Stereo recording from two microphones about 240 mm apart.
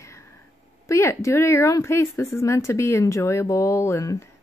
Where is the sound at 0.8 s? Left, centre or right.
Centre.